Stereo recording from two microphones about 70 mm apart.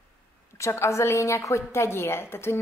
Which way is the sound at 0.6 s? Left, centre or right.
Left.